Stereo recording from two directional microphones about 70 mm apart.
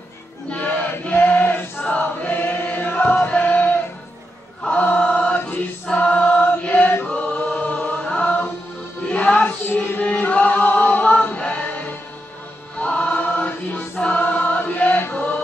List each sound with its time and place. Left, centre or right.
0.5 s chant: centre
3.3 s music: left
4.6 s chant: centre
9.0 s music: centre
9.8 s chant: centre
12.7 s choir: centre
14.2 s chant: left